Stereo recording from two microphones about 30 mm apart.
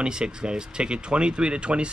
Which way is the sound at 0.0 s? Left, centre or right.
Right.